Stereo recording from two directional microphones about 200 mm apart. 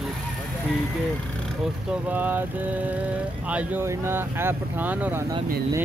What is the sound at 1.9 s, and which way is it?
Speech, 10° right (ahead or behind).